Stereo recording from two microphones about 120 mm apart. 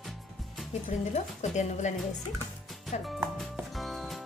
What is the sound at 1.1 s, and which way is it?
Speech, 70° left (ahead or behind).